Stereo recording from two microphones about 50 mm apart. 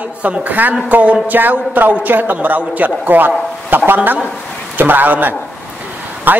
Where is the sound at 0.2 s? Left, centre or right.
Right.